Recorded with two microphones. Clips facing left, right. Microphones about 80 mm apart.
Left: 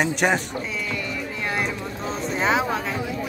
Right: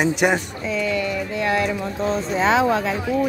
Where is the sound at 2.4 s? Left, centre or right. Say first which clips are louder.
Right 4 dB; right.